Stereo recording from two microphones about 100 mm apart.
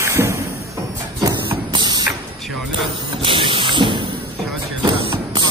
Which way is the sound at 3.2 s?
60° right (ahead or behind).